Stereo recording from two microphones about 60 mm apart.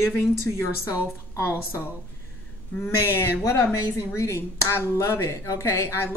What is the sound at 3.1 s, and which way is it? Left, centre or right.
Speech, left.